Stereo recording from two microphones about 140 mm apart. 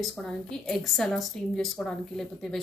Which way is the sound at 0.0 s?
5° left (ahead or behind).